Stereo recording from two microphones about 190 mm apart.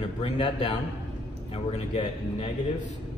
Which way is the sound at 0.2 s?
25° left (ahead or behind).